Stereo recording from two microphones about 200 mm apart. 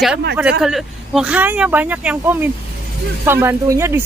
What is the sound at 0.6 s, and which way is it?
Speech, centre (ahead or behind).